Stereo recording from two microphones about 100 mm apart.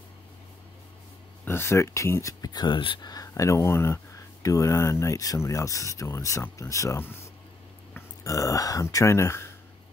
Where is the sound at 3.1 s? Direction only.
35° left (ahead or behind).